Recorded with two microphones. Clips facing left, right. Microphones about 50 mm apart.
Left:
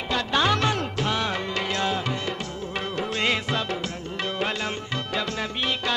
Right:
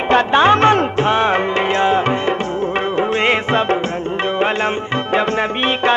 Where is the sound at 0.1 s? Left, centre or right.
Right.